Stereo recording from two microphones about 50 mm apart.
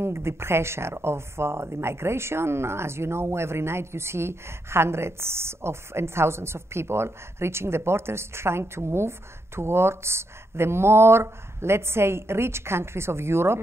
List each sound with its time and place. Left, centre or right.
0.0 s speech: right